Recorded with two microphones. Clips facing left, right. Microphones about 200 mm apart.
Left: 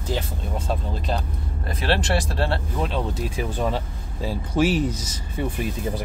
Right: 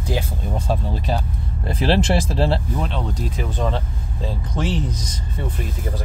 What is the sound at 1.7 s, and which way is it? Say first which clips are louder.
Speech: right 4 dB; 25° right (ahead or behind).